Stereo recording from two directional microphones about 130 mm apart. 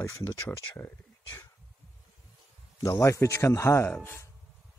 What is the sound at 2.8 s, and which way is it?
Speech, 25° left (ahead or behind).